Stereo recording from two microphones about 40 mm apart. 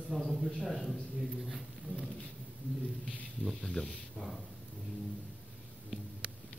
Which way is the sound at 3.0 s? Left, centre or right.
Centre.